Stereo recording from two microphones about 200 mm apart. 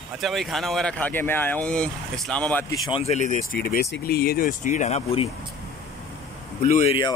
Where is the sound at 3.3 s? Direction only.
45° left (ahead or behind).